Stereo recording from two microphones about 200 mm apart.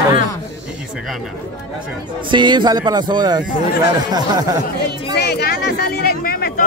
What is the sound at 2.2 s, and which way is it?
Speech, 25° right (ahead or behind).